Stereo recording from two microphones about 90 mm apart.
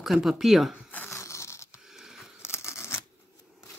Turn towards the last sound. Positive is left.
turn(degrees=30)  # may be behind; listen again after turning